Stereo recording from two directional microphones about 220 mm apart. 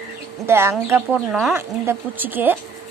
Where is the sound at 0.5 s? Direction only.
10° right (ahead or behind).